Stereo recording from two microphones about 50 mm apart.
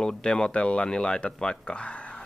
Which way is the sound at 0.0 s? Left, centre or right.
Centre.